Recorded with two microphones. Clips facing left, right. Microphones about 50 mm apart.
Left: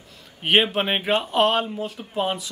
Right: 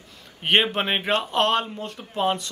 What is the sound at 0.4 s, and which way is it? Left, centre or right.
A man's voice, centre.